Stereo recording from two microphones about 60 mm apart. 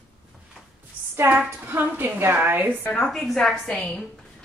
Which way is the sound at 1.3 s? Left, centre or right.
Right.